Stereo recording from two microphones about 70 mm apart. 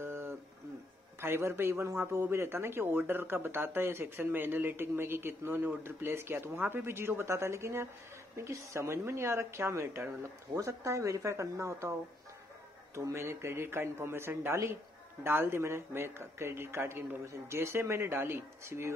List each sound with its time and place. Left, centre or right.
0.0 s guitar: right
1.2 s speech: right
12.9 s speech: right